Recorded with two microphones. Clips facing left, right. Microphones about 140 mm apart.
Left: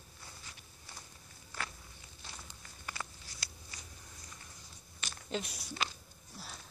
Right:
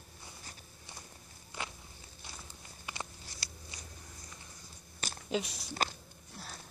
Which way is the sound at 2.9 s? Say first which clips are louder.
Right 1 dB; 20° right (ahead or behind).